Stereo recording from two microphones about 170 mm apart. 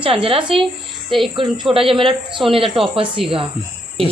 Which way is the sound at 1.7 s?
30° right (ahead or behind).